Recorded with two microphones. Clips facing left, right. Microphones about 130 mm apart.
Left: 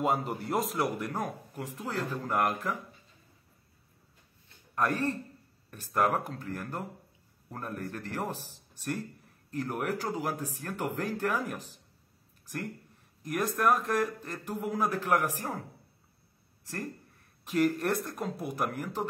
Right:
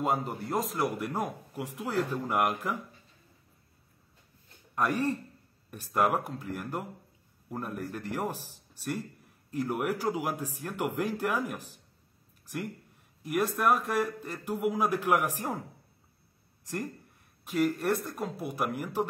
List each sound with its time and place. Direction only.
0.0 s speech: centre (ahead or behind)
1.1 s speech: 15° right (ahead or behind)
4.7 s speech: 15° right (ahead or behind)
16.6 s speech: 15° right (ahead or behind)
17.5 s speech: centre (ahead or behind)